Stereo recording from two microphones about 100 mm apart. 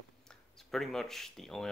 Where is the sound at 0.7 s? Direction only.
5° left (ahead or behind).